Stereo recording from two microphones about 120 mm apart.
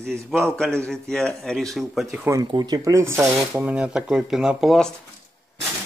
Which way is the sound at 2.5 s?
35° right (ahead or behind).